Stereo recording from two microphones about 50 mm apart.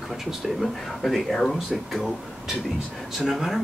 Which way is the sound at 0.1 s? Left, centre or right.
Centre.